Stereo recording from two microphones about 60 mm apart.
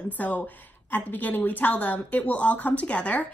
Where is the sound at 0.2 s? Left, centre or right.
Left.